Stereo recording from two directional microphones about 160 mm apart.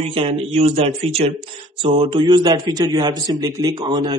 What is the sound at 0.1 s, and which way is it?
A man's voice, 35° right (ahead or behind).